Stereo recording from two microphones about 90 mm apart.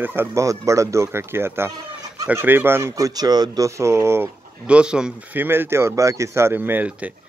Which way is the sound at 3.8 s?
30° right (ahead or behind).